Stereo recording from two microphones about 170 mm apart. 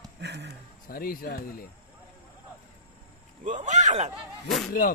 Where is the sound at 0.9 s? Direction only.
60° left (ahead or behind).